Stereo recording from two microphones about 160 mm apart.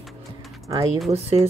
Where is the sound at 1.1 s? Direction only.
40° right (ahead or behind).